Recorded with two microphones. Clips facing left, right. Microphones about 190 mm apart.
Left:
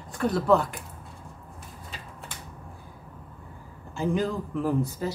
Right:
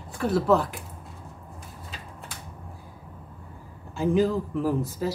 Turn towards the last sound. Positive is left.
turn(degrees=0)  # may be behind; listen again after turning